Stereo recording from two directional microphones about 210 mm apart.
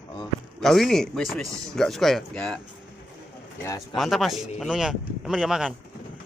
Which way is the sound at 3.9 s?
Centre (ahead or behind).